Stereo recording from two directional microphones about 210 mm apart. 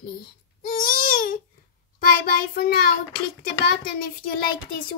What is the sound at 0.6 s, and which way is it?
Baby cry, 40° left (ahead or behind).